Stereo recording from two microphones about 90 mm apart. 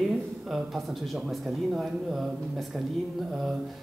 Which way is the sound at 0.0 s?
Centre (ahead or behind).